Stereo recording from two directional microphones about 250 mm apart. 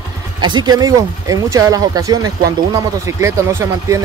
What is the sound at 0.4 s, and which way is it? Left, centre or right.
Speech, centre.